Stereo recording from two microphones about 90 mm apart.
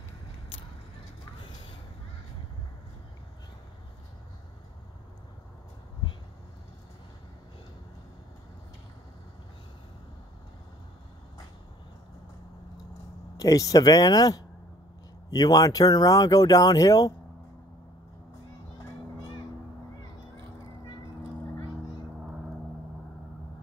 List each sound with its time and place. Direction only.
13.4 s speech: 40° left (ahead or behind)